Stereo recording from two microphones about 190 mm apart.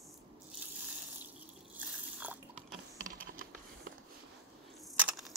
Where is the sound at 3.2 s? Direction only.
50° right (ahead or behind).